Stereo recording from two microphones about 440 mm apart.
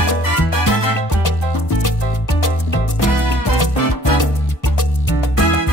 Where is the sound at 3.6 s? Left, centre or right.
Left.